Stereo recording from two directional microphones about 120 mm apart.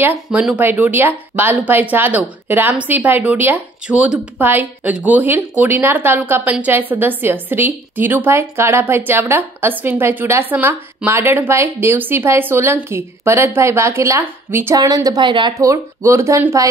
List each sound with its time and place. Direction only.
0.0 s a woman's voice: 10° right (ahead or behind)
14.8 s speech: 30° right (ahead or behind)
15.5 s a woman's voice: 25° right (ahead or behind)